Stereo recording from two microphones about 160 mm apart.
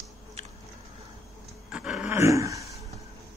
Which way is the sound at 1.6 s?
5° right (ahead or behind).